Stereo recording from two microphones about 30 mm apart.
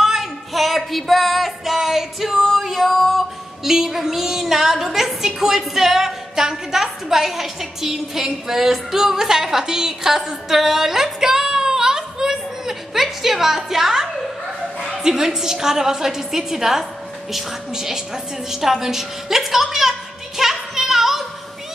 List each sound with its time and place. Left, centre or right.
0.0 s music: centre
3.6 s a woman's voice: centre
10.1 s a sound: centre
15.0 s a woman's voice: centre